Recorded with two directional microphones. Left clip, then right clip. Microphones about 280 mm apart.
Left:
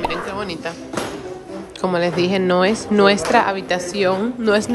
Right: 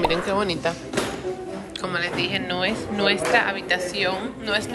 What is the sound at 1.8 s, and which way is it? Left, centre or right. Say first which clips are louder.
A woman's voice: left 7 dB; centre.